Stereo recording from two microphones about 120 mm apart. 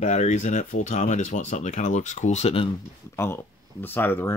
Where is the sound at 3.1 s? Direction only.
20° left (ahead or behind).